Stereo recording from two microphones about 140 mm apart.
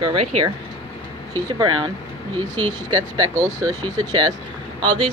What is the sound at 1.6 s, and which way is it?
Speech, 30° right (ahead or behind).